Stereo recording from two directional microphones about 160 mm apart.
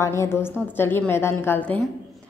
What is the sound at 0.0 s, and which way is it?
A woman's voice, 15° left (ahead or behind).